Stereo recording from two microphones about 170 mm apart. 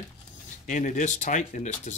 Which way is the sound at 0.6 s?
50° left (ahead or behind).